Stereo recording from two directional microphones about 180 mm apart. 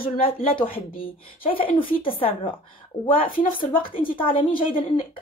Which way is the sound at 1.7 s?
30° left (ahead or behind).